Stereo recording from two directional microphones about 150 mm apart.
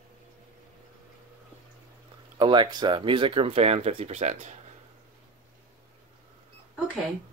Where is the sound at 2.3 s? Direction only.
35° right (ahead or behind); by 4.5 s 50° right (ahead or behind).